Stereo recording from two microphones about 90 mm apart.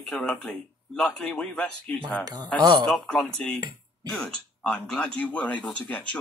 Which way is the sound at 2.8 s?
5° left (ahead or behind).